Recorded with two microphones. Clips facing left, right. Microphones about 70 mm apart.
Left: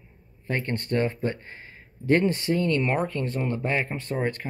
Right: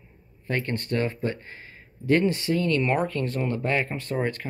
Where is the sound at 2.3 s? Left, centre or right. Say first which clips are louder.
Even; left.